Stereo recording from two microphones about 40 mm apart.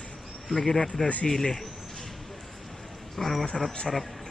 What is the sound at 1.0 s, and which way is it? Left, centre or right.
Speech, left.